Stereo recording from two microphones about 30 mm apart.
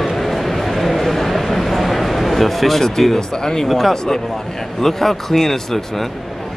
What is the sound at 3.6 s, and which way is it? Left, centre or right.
Speech, centre.